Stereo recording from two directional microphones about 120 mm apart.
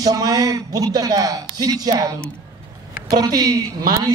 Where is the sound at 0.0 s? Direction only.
30° right (ahead or behind).